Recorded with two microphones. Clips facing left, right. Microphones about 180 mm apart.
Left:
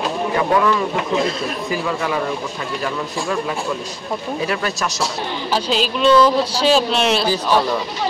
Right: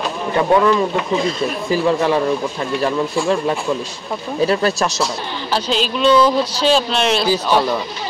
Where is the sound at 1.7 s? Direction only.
30° right (ahead or behind).